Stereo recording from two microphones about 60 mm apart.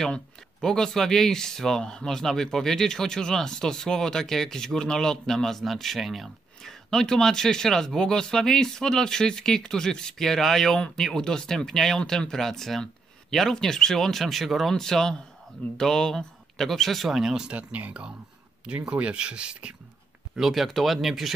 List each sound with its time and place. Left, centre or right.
0.0 s speech: centre
17.5 s speech: right
20.3 s speech: centre